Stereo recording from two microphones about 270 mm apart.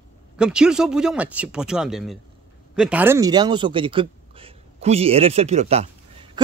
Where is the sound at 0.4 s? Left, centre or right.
Centre.